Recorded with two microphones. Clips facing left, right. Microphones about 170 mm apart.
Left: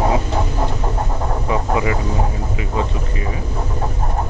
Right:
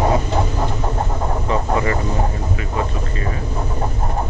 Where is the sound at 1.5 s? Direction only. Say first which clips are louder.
Even; 10° left (ahead or behind).